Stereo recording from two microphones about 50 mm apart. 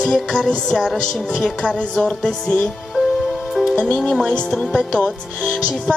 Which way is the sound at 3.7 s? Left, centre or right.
Left.